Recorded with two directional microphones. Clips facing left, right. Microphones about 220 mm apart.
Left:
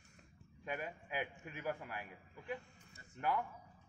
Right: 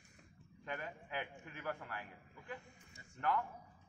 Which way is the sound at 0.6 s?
15° left (ahead or behind).